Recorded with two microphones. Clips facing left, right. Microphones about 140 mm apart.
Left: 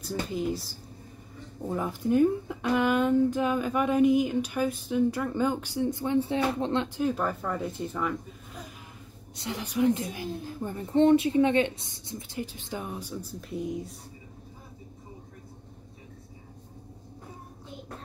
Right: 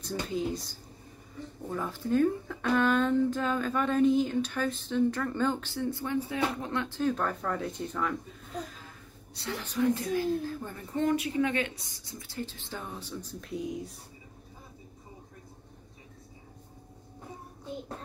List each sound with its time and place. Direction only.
0.0 s speech: 5° left (ahead or behind)
1.7 s speech: 15° left (ahead or behind)
7.0 s speech: 10° left (ahead or behind)
9.3 s speech: 15° left (ahead or behind); by 13.9 s centre (ahead or behind)